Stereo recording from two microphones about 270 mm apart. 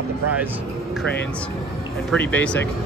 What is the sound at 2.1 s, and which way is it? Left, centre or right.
Speech, centre.